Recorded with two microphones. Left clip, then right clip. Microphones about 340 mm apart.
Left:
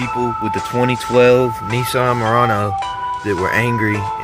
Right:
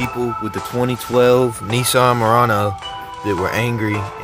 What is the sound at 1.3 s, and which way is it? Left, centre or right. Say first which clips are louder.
Speech: left 1 dB; centre.